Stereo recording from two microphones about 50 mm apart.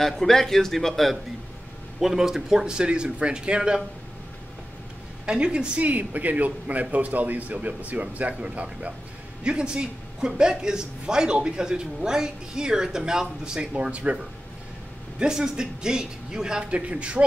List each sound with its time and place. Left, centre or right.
0.0 s a man's voice: centre
2.0 s speech: centre
5.2 s a woman's voice: centre
5.9 s a man's voice: right; by 13.7 s centre
13.7 s a woman's voice: right
15.1 s a woman's voice: centre